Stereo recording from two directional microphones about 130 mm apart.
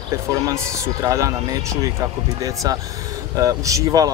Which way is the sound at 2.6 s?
30° right (ahead or behind).